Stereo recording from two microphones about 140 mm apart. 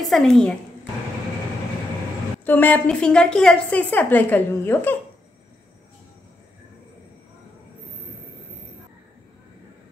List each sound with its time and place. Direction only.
0.0 s a woman's voice: centre (ahead or behind)
2.4 s a woman's voice: 15° left (ahead or behind)